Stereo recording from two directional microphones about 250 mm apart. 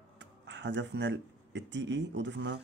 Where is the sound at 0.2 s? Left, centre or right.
Right.